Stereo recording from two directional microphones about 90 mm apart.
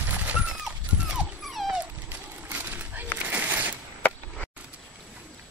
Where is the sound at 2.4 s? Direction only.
20° right (ahead or behind).